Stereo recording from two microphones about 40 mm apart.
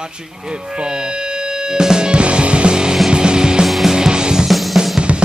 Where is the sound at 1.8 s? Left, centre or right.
Centre.